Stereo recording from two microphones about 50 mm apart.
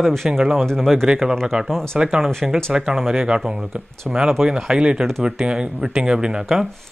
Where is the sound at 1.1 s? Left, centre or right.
Centre.